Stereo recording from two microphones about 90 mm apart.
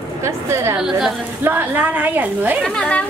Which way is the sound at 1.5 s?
20° right (ahead or behind).